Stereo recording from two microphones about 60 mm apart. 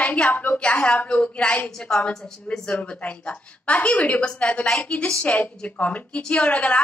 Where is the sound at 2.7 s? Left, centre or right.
Left.